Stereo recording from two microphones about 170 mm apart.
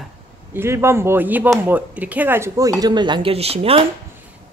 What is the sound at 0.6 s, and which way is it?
A woman's voice, 15° right (ahead or behind).